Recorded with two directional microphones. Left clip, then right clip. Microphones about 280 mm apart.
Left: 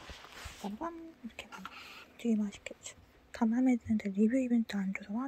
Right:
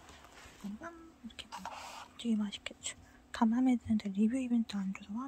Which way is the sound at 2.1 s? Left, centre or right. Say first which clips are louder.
Left 3 dB; centre.